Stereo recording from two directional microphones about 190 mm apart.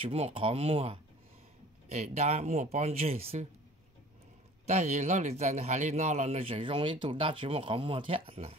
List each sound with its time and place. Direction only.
0.0 s speech: 30° right (ahead or behind)
4.6 s speech: 35° right (ahead or behind)